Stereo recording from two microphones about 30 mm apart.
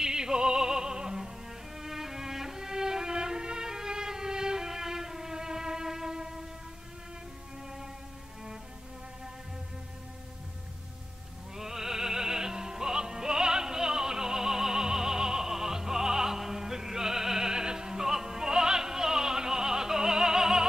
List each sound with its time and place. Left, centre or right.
0.0 s music: right
1.8 s violin: centre
11.5 s music: centre